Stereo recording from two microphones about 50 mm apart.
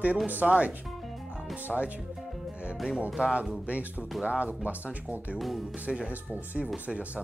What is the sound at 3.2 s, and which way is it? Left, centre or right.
Speech, right.